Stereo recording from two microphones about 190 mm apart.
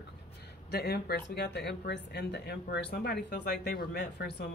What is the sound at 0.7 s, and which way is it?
Speech, 60° left (ahead or behind).